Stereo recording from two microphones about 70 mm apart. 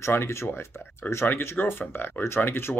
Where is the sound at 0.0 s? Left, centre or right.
Left.